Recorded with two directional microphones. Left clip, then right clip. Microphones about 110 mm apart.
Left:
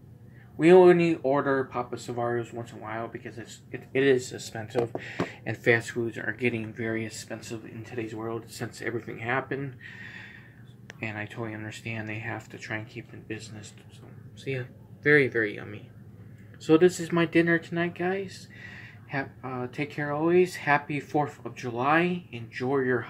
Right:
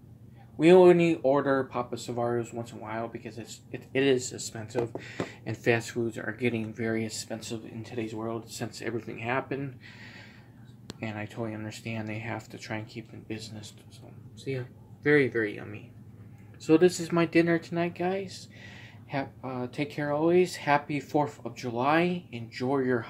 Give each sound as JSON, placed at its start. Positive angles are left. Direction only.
{"t": 0.6, "sound": "speech", "side_deg": -15}
{"t": 1.2, "sound": "speech", "side_deg": -35}
{"t": 2.1, "sound": "speech", "side_deg": -25}
{"t": 8.1, "sound": "speech", "side_deg": -15}
{"t": 11.0, "sound": "speech", "side_deg": -15}
{"t": 11.3, "sound": "speech", "side_deg": -25}
{"t": 12.4, "sound": "speech", "side_deg": -40}
{"t": 14.4, "sound": "speech", "side_deg": -15}
{"t": 17.0, "sound": "speech", "side_deg": -20}
{"t": 20.4, "sound": "speech", "side_deg": -35}